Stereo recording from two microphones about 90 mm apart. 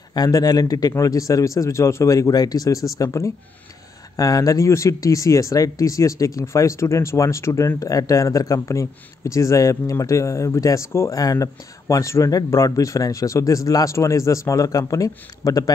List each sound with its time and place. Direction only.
0.1 s speech: 45° left (ahead or behind)